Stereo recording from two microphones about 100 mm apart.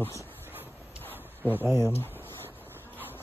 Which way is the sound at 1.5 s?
25° right (ahead or behind).